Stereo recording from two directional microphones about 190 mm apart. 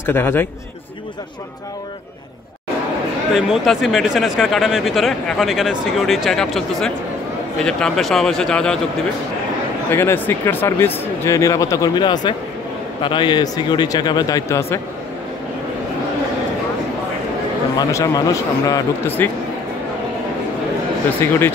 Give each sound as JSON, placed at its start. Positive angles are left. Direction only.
{"t": 0.0, "sound": "speech", "side_deg": 10}
{"t": 3.3, "sound": "speech", "side_deg": 0}
{"t": 9.8, "sound": "a man's voice", "side_deg": 10}
{"t": 17.7, "sound": "speech", "side_deg": 20}
{"t": 21.2, "sound": "speech", "side_deg": 15}